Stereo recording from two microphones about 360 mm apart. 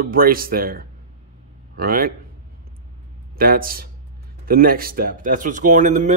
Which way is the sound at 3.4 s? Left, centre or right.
Right.